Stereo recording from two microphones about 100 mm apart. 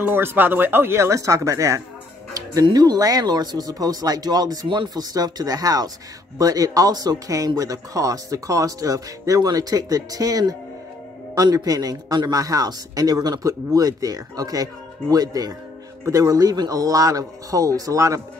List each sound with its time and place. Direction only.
0.0 s speech: 20° right (ahead or behind)
2.6 s speech: 40° right (ahead or behind)